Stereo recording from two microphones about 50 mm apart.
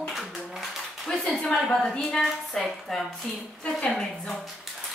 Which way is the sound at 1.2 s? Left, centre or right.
Centre.